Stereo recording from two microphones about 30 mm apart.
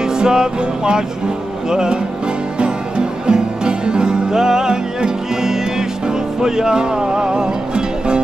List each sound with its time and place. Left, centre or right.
0.0 s music: right